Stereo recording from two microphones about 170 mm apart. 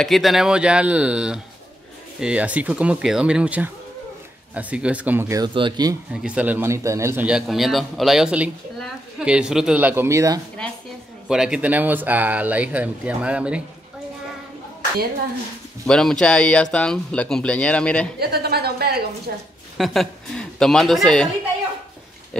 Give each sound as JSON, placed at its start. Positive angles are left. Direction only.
{"t": 0.0, "sound": "a woman's voice", "side_deg": 0}
{"t": 5.4, "sound": "speech", "side_deg": -30}
{"t": 6.1, "sound": "a man's voice", "side_deg": -5}
{"t": 11.2, "sound": "a man's voice", "side_deg": -5}
{"t": 15.9, "sound": "speech", "side_deg": 5}
{"t": 18.2, "sound": "a woman's voice", "side_deg": -70}
{"t": 19.8, "sound": "a woman's voice", "side_deg": 0}